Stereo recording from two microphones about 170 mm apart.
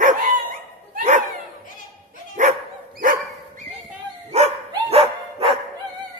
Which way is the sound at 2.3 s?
45° right (ahead or behind).